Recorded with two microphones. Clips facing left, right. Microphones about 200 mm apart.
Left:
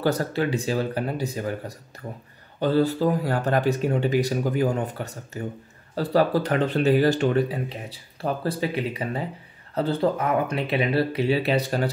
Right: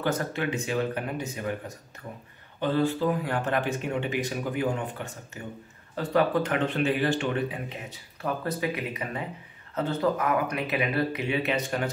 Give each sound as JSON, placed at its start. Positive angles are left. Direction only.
{"t": 0.0, "sound": "speech", "side_deg": 35}